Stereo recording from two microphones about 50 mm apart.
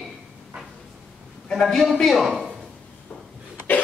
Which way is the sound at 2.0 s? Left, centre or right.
Centre.